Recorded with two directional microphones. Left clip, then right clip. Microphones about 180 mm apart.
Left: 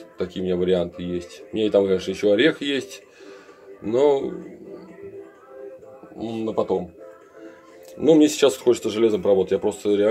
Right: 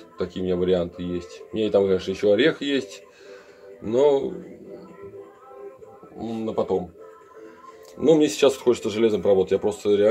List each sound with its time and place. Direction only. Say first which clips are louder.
0.2 s speech: left 1 dB; 10° left (ahead or behind)
6.1 s a man's voice: left 2 dB; 20° left (ahead or behind)
8.0 s speech: left 2 dB; 10° left (ahead or behind)